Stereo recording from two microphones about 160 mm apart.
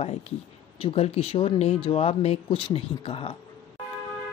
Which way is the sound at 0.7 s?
35° left (ahead or behind).